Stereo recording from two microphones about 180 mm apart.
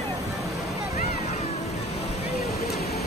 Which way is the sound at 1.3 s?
40° left (ahead or behind).